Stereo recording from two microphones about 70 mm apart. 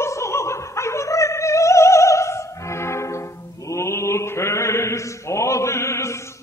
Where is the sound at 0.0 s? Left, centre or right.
Left.